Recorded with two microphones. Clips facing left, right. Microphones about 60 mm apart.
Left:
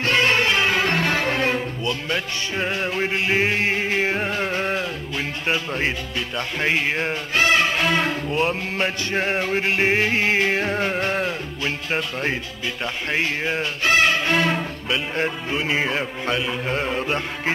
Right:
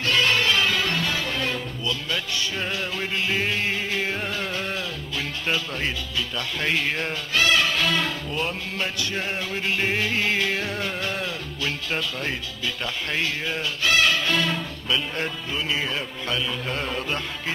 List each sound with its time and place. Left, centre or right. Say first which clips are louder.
0.0 s speech: left 3 dB; left